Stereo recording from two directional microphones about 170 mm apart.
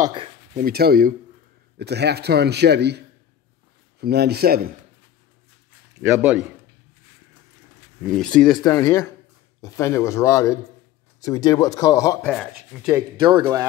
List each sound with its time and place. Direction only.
0.0 s speech: 30° right (ahead or behind)
0.6 s speech: 65° right (ahead or behind)
1.8 s a man's voice: 75° right (ahead or behind)
4.0 s a man's voice: 70° right (ahead or behind)
6.0 s a man's voice: 10° right (ahead or behind)
8.0 s speech: 5° left (ahead or behind)
8.6 s a man's voice: 20° left (ahead or behind)
12.3 s speech: 5° left (ahead or behind)
13.2 s speech: 25° right (ahead or behind)